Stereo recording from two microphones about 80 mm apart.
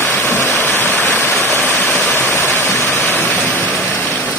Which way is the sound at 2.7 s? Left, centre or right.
Left.